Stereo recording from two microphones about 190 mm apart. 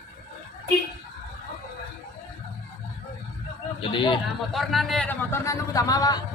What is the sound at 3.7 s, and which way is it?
Speech, 25° left (ahead or behind).